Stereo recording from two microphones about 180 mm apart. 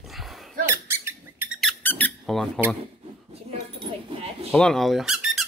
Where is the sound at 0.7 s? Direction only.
15° right (ahead or behind).